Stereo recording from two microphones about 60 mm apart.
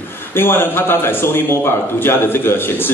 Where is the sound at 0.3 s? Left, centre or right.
Left.